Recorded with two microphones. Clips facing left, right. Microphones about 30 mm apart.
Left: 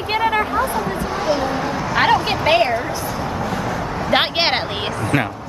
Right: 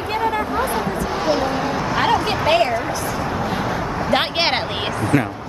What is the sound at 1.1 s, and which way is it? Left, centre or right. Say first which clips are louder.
Speech: even; centre.